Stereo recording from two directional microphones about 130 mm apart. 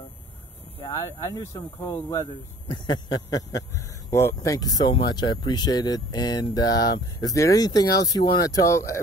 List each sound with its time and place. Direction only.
0.9 s speech: 25° left (ahead or behind)